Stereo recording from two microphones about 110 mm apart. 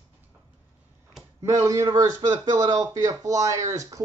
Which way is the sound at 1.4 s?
30° right (ahead or behind).